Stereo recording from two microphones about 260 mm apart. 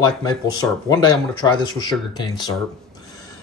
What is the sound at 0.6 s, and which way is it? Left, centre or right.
Speech, centre.